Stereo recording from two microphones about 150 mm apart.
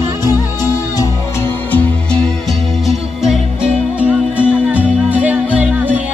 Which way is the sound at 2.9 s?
5° right (ahead or behind).